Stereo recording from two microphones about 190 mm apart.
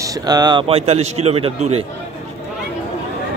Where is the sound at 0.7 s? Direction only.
35° right (ahead or behind).